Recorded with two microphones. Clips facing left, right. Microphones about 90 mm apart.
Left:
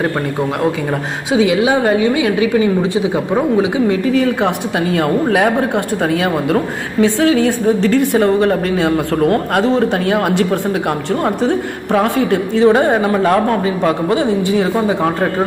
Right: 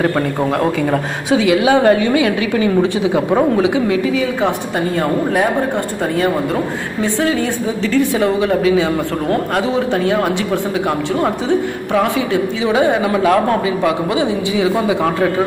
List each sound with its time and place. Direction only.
1.3 s a woman's voice: 25° left (ahead or behind)
4.0 s a woman's voice: 50° left (ahead or behind)
4.7 s a woman's voice: 80° left; by 15.0 s 45° left (ahead or behind)